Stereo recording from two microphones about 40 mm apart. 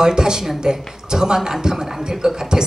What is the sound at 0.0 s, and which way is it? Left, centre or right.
A man's voice, centre.